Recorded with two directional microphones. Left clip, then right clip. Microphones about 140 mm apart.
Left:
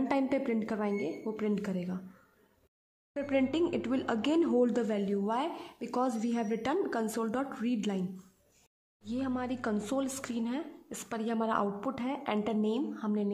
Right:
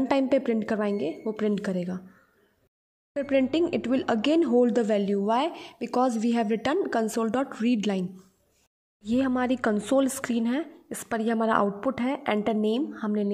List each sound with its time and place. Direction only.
0.1 s a woman's voice: 35° right (ahead or behind)
3.2 s a woman's voice: 30° right (ahead or behind)
9.0 s a woman's voice: 45° right (ahead or behind)